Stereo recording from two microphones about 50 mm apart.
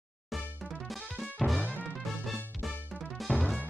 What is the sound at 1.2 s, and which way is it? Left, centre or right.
Music, centre.